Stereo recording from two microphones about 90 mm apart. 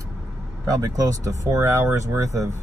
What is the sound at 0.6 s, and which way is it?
Speech, 45° right (ahead or behind).